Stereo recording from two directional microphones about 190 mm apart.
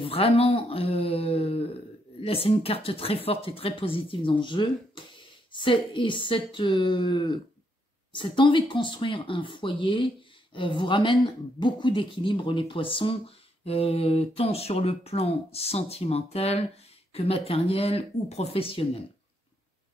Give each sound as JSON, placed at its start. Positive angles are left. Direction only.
{"t": 0.0, "sound": "speech", "side_deg": 30}